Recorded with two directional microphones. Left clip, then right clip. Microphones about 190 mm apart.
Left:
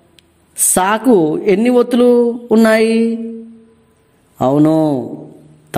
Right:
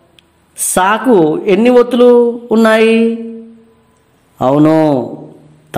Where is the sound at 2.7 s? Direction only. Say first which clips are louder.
Right 5 dB; 35° left (ahead or behind).